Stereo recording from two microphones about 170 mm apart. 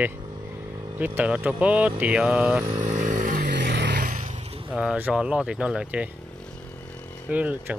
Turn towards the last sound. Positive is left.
turn(degrees=-10)  # may be behind; listen again after turning